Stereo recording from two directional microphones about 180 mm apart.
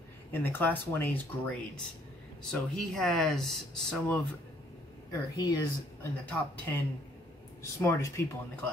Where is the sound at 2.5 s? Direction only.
Centre (ahead or behind).